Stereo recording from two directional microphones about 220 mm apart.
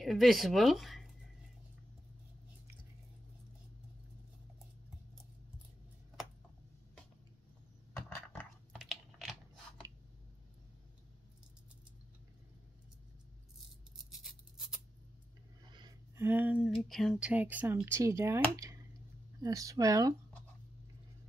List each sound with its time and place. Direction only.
0.0 s speech: centre (ahead or behind)
7.9 s a sound: 10° left (ahead or behind)
8.7 s typing: centre (ahead or behind)
15.7 s a sound: 20° right (ahead or behind)
16.3 s speech: 10° right (ahead or behind)
19.4 s speech: 15° right (ahead or behind)